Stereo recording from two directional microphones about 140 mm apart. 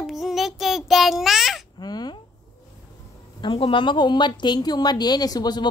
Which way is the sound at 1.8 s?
30° left (ahead or behind).